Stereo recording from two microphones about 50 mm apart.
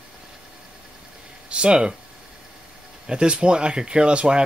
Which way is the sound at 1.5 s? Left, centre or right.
Centre.